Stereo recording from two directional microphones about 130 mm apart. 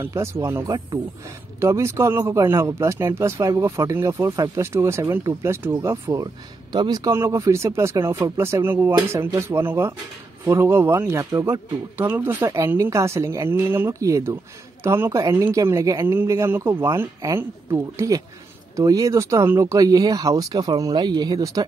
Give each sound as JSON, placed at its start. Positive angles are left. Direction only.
{"t": 0.0, "sound": "a man's voice", "side_deg": -20}